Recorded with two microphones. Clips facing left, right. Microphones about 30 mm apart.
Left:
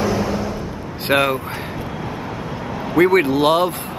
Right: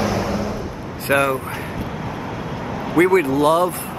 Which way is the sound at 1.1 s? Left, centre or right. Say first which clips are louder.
Left 1 dB; left.